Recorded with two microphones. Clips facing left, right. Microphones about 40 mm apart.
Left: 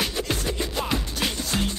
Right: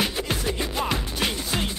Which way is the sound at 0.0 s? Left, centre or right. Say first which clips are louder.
Right 1 dB; centre.